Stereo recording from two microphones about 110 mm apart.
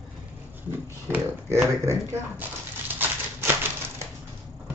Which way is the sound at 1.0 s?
20° right (ahead or behind).